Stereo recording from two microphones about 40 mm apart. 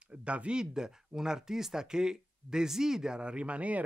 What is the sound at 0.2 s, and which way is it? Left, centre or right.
Speech, right.